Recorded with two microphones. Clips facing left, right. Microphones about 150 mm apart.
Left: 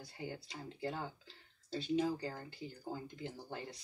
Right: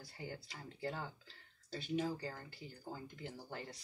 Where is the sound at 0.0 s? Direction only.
20° left (ahead or behind).